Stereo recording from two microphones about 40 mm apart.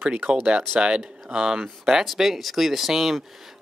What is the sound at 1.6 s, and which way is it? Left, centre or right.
Speech, centre.